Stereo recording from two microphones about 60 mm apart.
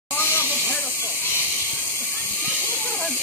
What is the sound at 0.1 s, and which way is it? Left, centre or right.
Hiss, left.